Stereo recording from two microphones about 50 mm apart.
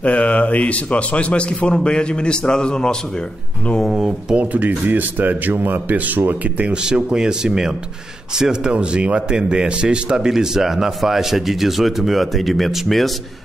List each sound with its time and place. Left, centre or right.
0.0 s a man's voice: left
3.9 s a man's voice: centre
4.4 s speech: right
7.2 s a man's voice: centre